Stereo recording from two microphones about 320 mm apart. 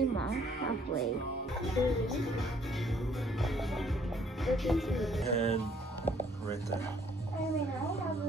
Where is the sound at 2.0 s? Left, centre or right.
Centre.